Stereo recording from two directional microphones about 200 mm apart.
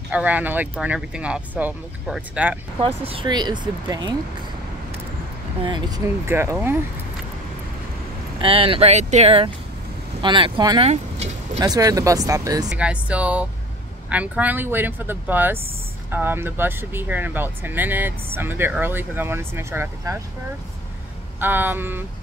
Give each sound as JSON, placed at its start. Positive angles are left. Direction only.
{"t": 0.1, "sound": "speech", "side_deg": -10}
{"t": 2.8, "sound": "speech", "side_deg": -25}
{"t": 5.6, "sound": "speech", "side_deg": -20}
{"t": 8.4, "sound": "speech", "side_deg": -25}
{"t": 10.9, "sound": "vehicle", "side_deg": -35}
{"t": 11.6, "sound": "speech", "side_deg": -20}
{"t": 12.6, "sound": "speech", "side_deg": -5}
{"t": 21.4, "sound": "speech", "side_deg": -10}